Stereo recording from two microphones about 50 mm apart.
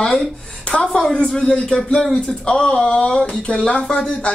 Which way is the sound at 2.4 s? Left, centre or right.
Centre.